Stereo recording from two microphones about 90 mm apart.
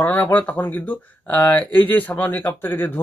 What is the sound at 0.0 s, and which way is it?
Speech, 20° left (ahead or behind).